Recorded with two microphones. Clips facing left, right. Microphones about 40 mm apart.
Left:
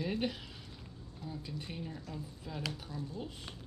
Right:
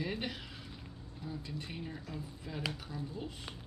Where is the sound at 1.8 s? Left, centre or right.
Centre.